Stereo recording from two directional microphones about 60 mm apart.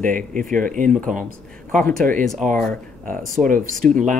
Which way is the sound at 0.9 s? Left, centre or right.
Centre.